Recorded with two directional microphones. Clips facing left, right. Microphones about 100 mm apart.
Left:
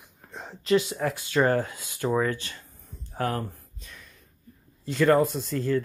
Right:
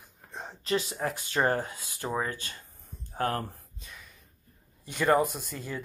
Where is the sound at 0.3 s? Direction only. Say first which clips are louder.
Left 7 dB; 20° right (ahead or behind).